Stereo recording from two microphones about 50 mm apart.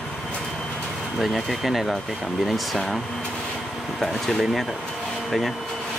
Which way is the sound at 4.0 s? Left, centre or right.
Centre.